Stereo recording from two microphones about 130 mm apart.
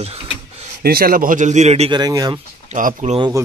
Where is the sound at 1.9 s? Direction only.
30° right (ahead or behind).